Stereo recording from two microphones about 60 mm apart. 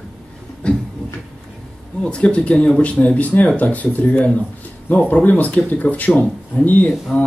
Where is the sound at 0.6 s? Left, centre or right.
Centre.